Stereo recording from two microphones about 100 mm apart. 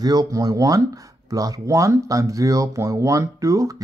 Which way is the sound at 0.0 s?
40° right (ahead or behind).